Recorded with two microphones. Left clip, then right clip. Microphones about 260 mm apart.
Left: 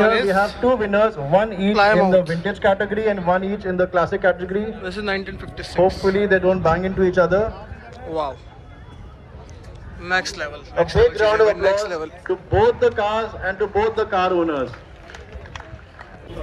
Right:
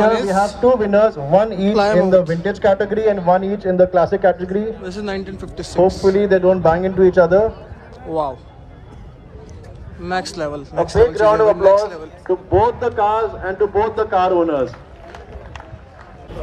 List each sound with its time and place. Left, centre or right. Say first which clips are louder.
0.1 s speech: right 1 dB; centre
0.7 s a man's voice: right 6 dB; right
1.7 s speech: left 2 dB; centre
2.6 s a man's voice: right 3 dB; right
4.8 s speech: left 1 dB; centre
6.0 s a man's voice: right 4 dB; right
8.1 s speech: right 4 dB; centre
10.0 s speech: even; centre
11.6 s speech: right 6 dB; centre
12.2 s a man's voice: right 4 dB; right